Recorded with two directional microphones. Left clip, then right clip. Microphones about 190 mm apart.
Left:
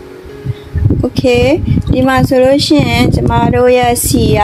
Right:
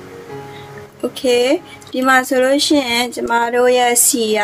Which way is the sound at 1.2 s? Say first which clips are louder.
Left 4 dB; 10° left (ahead or behind).